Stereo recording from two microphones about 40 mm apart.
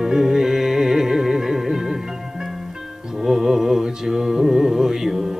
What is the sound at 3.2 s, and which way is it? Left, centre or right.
Music, centre.